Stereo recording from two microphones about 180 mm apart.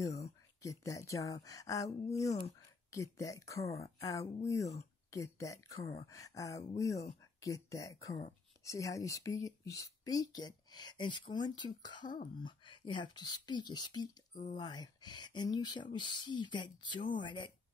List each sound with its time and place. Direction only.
0.0 s speech: 20° left (ahead or behind)
14.3 s speech: 45° left (ahead or behind)
14.6 s speech: 25° left (ahead or behind)